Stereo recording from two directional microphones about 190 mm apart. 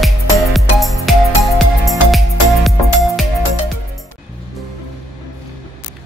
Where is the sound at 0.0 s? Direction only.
Centre (ahead or behind).